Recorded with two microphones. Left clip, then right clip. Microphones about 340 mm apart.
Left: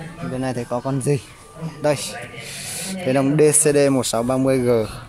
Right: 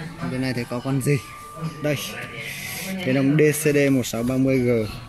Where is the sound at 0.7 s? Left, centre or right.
Centre.